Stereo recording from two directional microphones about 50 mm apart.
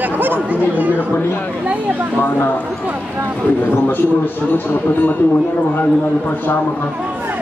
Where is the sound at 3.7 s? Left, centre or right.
Left.